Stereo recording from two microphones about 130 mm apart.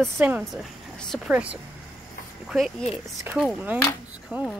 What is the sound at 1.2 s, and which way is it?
Speech, 10° right (ahead or behind).